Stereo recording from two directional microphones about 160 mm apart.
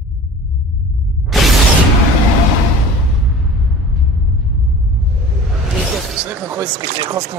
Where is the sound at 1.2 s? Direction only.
Centre (ahead or behind).